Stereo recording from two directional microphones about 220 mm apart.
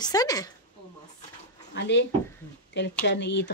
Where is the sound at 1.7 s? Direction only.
55° left (ahead or behind).